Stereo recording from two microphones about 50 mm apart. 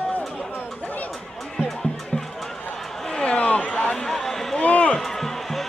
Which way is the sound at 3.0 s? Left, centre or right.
Centre.